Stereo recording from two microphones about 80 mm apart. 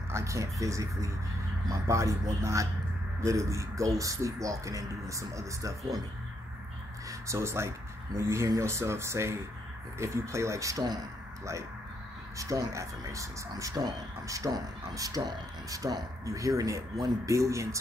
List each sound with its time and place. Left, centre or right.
0.1 s speech: right
7.1 s speech: right
12.4 s speech: right